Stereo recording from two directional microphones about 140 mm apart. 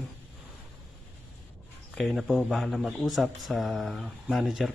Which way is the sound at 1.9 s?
Centre (ahead or behind).